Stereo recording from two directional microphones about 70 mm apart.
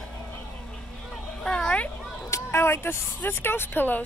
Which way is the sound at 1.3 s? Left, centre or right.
Centre.